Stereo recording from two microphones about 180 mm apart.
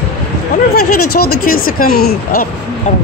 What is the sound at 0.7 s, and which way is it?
Speech, 60° left (ahead or behind).